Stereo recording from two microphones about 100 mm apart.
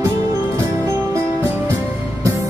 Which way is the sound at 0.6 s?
30° right (ahead or behind).